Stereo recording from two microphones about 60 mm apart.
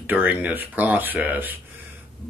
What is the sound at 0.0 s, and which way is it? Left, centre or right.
Speech, right.